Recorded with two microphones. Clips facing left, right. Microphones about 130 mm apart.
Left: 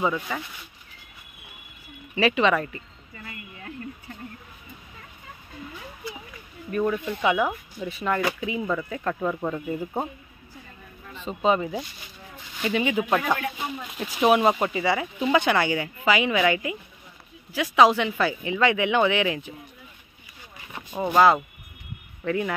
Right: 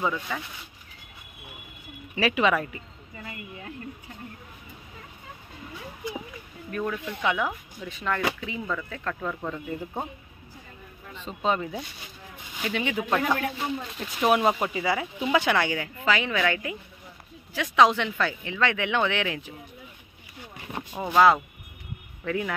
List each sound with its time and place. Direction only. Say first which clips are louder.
0.0 s speech: left 3 dB; 10° left (ahead or behind)
2.1 s speech: left 2 dB; 5° right (ahead or behind)
6.0 s a sound: right 4 dB; 15° right (ahead or behind)
6.7 s speech: left 5 dB; 10° left (ahead or behind)
11.1 s speech: left 4 dB; 5° left (ahead or behind)
20.9 s speech: left 1 dB; 5° left (ahead or behind)